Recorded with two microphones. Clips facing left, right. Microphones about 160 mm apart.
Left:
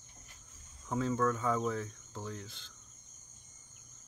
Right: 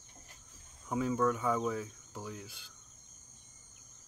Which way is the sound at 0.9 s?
10° right (ahead or behind).